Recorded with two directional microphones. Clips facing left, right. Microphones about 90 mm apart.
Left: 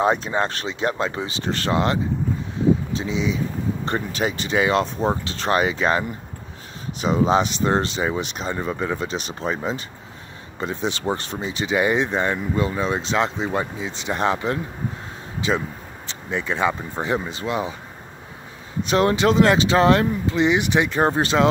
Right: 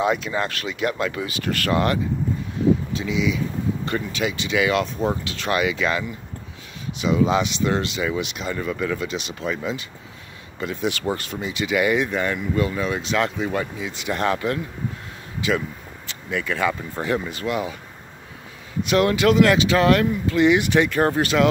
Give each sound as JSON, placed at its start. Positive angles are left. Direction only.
{"t": 0.0, "sound": "speech", "side_deg": 35}
{"t": 18.9, "sound": "speech", "side_deg": 30}